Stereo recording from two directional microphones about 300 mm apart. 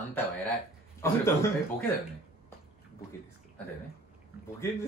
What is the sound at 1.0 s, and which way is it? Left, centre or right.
Speech, centre.